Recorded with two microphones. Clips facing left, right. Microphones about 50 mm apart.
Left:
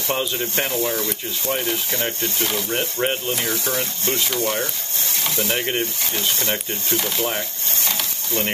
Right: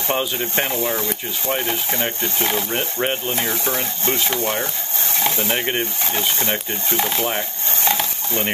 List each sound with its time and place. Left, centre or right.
0.2 s speech: right
2.7 s speech: centre
3.3 s speech: right
5.6 s speech: centre
6.1 s speech: right
7.8 s a sound: right